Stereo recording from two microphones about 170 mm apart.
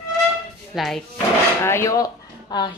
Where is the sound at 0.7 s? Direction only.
Centre (ahead or behind).